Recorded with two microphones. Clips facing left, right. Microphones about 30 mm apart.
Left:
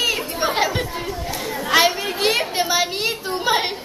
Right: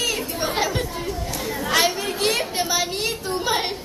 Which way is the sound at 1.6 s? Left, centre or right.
Centre.